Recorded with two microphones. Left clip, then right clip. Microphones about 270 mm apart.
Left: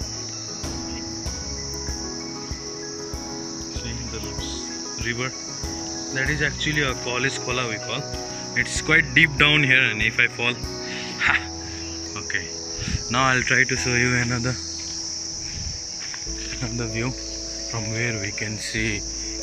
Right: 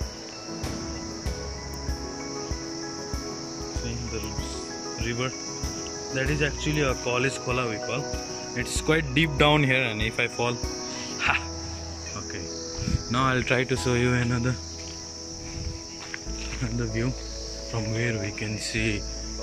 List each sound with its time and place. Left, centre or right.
6.1 s speech: centre
13.1 s speech: centre